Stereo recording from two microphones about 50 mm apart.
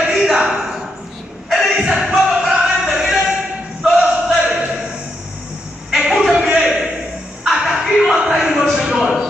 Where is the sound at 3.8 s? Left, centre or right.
Centre.